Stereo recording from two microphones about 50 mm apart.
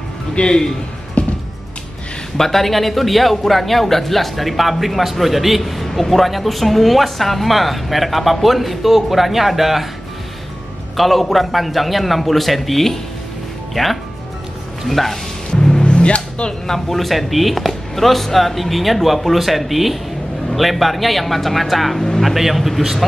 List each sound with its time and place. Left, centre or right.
0.3 s speech: centre
1.2 s music: left
2.3 s a man's voice: centre
11.0 s a man's voice: centre
15.5 s music: centre
15.8 s music: left
16.6 s a man's voice: centre